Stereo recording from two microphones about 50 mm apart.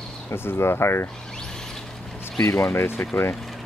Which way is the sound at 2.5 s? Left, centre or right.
Left.